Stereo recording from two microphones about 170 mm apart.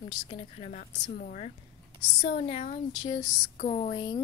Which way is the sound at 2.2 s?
35° left (ahead or behind).